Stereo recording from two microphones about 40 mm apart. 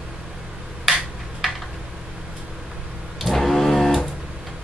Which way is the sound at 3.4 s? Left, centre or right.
Centre.